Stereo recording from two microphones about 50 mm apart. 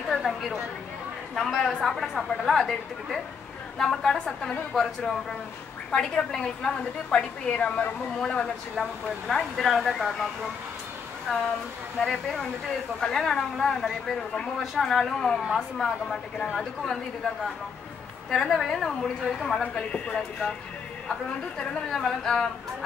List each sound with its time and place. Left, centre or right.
0.1 s a sound: centre
1.3 s a woman's voice: centre; by 8.5 s left
9.3 s a woman's voice: centre
11.3 s a woman's voice: centre
12.0 s speech: centre
18.3 s speech: centre